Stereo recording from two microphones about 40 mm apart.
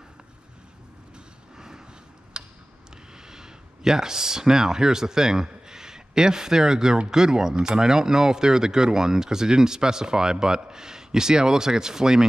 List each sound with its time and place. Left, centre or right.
2.3 s tick-tock: right
3.2 s speech: centre